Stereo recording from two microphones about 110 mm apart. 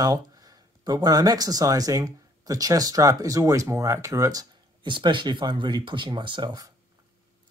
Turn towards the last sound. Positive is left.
turn(degrees=-40)  # may be behind; listen again after turning